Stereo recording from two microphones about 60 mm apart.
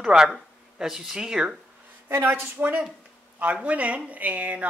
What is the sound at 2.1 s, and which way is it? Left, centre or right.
Speech, right.